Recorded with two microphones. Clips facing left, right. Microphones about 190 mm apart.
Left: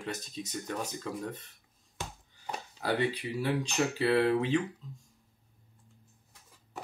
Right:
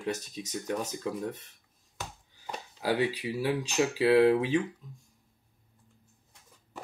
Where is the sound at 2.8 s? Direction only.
10° right (ahead or behind).